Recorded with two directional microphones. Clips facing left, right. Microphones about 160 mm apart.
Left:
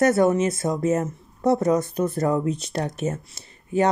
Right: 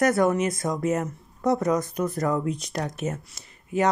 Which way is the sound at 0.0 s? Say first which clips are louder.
Left 3 dB; 25° left (ahead or behind).